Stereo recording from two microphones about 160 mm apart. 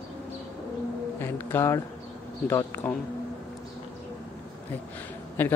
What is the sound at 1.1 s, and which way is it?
Speech, 15° left (ahead or behind).